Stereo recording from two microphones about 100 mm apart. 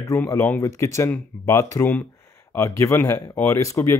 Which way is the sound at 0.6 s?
30° left (ahead or behind).